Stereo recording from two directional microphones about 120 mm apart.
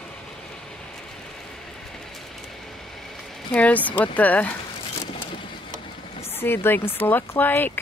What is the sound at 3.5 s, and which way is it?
Speech, 10° left (ahead or behind).